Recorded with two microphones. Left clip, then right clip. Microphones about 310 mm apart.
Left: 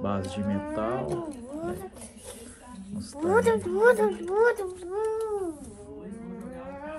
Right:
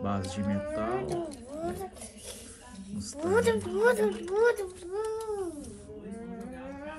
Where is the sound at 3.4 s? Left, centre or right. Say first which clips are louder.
Left 5 dB; centre.